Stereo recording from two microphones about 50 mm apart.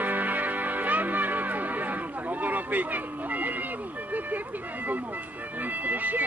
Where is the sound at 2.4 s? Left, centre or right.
Right.